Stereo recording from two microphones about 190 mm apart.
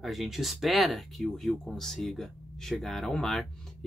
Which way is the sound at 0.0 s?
Centre (ahead or behind).